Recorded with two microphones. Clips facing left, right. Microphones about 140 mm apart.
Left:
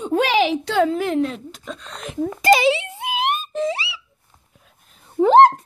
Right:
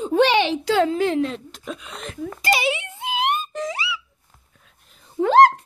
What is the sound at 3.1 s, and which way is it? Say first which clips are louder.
Wail: left 1 dB; 20° left (ahead or behind).